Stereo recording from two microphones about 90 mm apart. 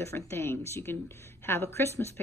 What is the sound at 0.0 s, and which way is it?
A woman's voice, 30° left (ahead or behind).